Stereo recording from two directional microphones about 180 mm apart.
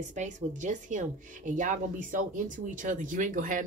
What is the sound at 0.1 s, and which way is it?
Speech, 45° right (ahead or behind).